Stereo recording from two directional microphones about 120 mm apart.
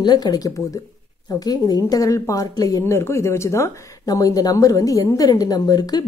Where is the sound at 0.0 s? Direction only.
35° left (ahead or behind).